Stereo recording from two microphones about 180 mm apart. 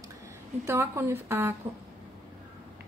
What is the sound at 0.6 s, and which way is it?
Speech, 15° right (ahead or behind).